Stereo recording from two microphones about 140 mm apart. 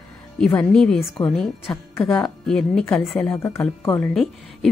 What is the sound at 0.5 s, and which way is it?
Speech, 5° left (ahead or behind).